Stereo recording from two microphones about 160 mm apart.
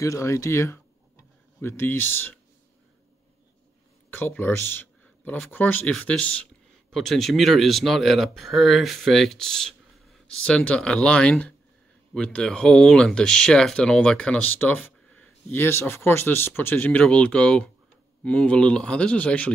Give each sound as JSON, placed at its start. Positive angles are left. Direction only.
{"t": 0.0, "sound": "speech", "side_deg": 20}
{"t": 4.1, "sound": "speech", "side_deg": 15}